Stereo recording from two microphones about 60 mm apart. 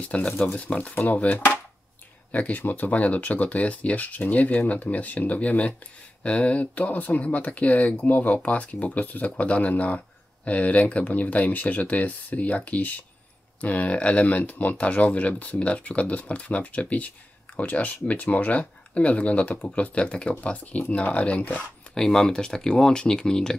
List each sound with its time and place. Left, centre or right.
0.0 s speech: centre
21.9 s speech: centre